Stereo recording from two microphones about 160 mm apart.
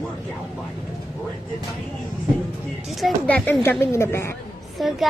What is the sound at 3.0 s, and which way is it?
A woman's voice, 10° left (ahead or behind).